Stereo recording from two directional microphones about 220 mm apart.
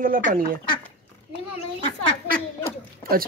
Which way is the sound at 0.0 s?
40° right (ahead or behind).